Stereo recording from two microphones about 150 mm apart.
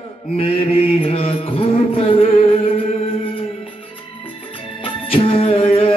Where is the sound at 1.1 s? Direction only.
40° left (ahead or behind).